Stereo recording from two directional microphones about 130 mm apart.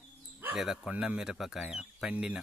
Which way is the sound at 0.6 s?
5° right (ahead or behind).